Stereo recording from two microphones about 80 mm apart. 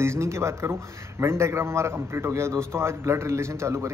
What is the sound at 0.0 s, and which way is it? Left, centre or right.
Speech, right.